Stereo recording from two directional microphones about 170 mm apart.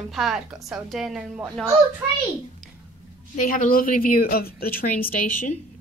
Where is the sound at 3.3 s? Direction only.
50° left (ahead or behind).